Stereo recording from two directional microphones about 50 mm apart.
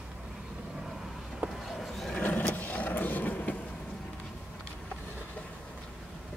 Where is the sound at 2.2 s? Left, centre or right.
Left.